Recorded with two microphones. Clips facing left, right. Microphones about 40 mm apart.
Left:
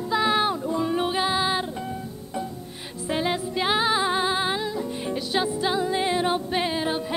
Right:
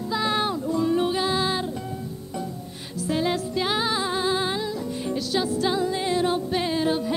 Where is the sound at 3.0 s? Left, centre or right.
Centre.